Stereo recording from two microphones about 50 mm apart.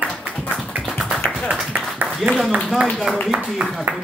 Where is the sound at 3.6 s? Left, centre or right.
Right.